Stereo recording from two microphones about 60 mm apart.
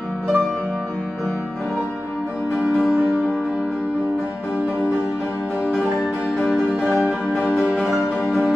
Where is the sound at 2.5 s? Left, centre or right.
Centre.